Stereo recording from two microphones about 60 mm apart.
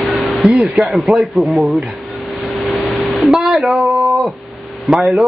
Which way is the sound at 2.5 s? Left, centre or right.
Centre.